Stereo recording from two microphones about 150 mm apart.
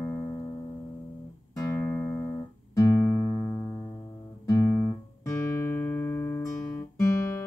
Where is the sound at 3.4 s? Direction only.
15° left (ahead or behind).